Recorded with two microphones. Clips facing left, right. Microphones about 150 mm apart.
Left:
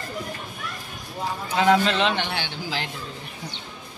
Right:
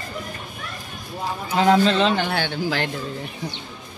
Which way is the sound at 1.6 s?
35° right (ahead or behind).